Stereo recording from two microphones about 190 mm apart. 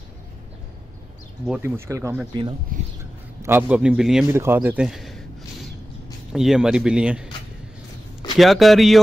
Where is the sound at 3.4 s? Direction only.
10° right (ahead or behind).